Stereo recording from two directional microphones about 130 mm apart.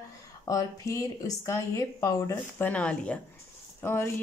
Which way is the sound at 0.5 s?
25° left (ahead or behind).